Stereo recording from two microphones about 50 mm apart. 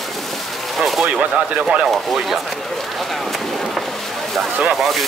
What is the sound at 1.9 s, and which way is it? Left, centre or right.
Speech, centre.